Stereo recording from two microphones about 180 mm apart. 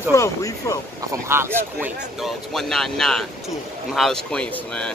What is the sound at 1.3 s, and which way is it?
Speech, 15° right (ahead or behind).